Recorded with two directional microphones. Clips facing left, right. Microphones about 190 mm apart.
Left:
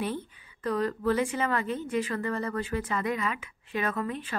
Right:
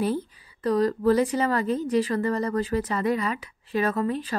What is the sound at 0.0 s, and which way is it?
A woman's voice, 35° right (ahead or behind).